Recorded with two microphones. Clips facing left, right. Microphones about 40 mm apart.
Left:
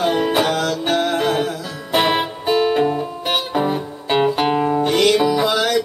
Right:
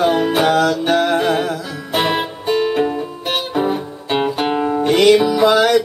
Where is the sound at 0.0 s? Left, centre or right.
Centre.